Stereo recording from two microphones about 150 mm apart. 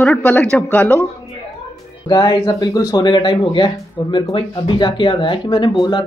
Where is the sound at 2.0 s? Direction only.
30° left (ahead or behind).